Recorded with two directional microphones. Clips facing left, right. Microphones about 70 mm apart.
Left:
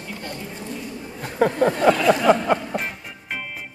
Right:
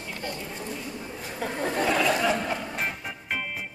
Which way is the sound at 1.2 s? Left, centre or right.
Left.